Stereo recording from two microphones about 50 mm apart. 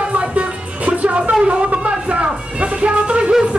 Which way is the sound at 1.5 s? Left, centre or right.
Right.